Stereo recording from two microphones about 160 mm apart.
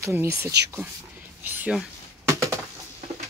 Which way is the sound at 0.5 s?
90° right.